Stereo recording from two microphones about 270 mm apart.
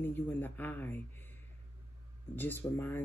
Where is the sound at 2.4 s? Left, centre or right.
Centre.